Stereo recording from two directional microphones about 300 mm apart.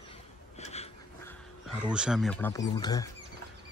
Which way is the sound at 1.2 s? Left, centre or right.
Centre.